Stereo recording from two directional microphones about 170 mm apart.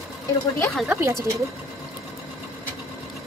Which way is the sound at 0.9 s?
15° right (ahead or behind).